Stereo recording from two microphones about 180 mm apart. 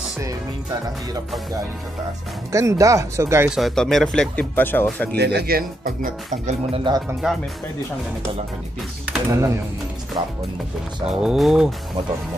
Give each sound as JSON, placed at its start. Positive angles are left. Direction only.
{"t": 2.5, "sound": "speech", "side_deg": -15}
{"t": 3.4, "sound": "speech", "side_deg": 0}
{"t": 5.1, "sound": "speech", "side_deg": -65}
{"t": 7.2, "sound": "speech", "side_deg": -5}
{"t": 9.0, "sound": "speech", "side_deg": -15}
{"t": 11.1, "sound": "speech", "side_deg": -5}